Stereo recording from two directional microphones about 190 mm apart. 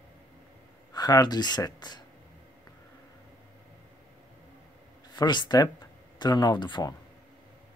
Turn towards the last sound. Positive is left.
turn(degrees=25)  # may be behind; listen again after turning